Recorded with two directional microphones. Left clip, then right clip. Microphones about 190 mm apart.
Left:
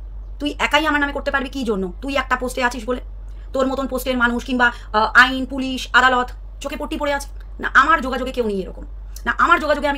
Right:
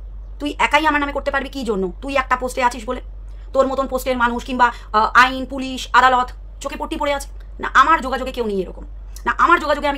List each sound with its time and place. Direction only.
0.4 s a woman's voice: 15° right (ahead or behind)